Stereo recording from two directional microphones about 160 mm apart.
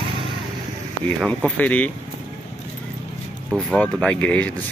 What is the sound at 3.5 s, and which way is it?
Speech, 5° left (ahead or behind).